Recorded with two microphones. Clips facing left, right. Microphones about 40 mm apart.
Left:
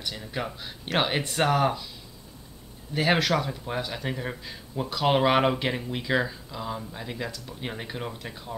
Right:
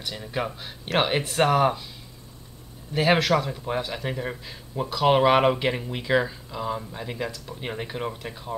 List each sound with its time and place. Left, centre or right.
0.1 s speech: centre
2.9 s speech: centre